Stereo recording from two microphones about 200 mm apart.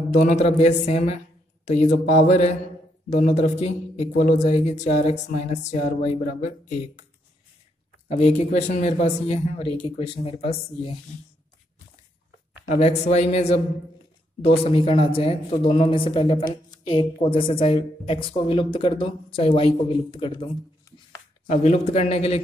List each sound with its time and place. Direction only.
0.1 s a man's voice: 35° left (ahead or behind)
8.1 s a man's voice: 30° left (ahead or behind)
12.6 s a man's voice: 30° left (ahead or behind)
21.5 s a man's voice: 35° left (ahead or behind)